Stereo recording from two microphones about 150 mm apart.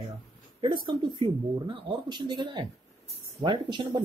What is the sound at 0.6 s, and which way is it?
Speech, 30° right (ahead or behind).